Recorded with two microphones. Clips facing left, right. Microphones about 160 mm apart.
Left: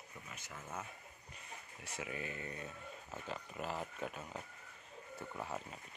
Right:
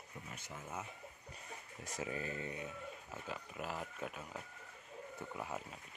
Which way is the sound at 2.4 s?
10° right (ahead or behind).